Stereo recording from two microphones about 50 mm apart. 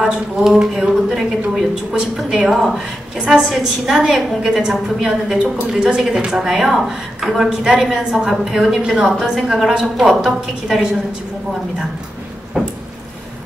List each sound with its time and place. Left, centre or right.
0.4 s a woman's voice: centre
9.6 s a woman's voice: centre
12.6 s a sound: centre